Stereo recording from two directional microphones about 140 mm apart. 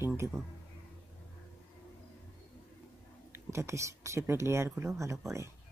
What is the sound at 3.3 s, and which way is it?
Speech, 20° right (ahead or behind).